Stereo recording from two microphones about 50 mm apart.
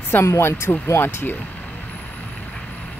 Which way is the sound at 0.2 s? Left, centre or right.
Left.